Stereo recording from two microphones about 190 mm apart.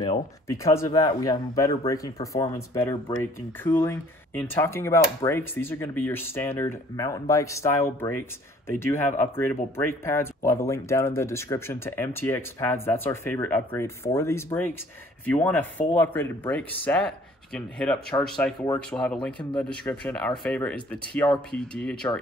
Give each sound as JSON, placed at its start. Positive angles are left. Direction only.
{"t": 0.5, "sound": "speech", "side_deg": 15}